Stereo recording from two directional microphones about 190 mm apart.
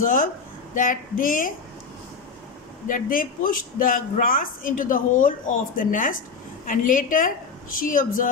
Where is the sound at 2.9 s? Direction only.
45° left (ahead or behind).